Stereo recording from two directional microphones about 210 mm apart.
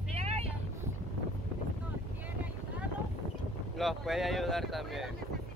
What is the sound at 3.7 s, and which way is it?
Speech, centre (ahead or behind).